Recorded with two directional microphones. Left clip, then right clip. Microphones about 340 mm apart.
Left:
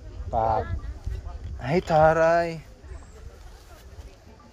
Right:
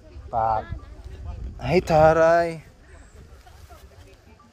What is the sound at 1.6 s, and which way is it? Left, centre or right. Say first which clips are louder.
Speech: right 3 dB; right.